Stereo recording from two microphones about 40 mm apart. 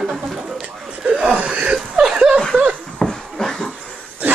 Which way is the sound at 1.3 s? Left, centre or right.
Right.